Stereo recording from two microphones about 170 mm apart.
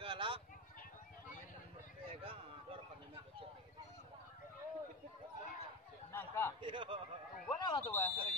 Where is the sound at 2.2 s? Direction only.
30° right (ahead or behind).